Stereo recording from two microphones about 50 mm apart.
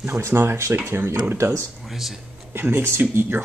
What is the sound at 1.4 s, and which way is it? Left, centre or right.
Speech, right.